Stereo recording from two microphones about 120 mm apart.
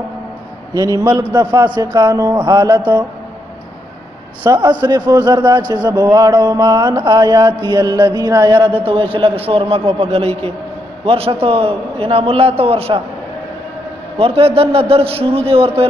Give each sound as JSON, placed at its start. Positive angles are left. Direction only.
{"t": 0.7, "sound": "mantra", "side_deg": -35}
{"t": 1.3, "sound": "a man's voice", "side_deg": -30}
{"t": 4.5, "sound": "mantra", "side_deg": -35}
{"t": 8.8, "sound": "a man's voice", "side_deg": -45}
{"t": 14.1, "sound": "a man's voice", "side_deg": -55}